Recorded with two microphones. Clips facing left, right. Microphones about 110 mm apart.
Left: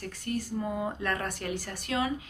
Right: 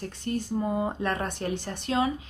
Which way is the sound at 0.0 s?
25° right (ahead or behind).